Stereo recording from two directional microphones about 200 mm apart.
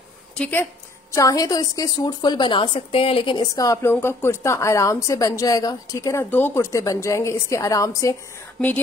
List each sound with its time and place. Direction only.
0.4 s speech: 10° left (ahead or behind)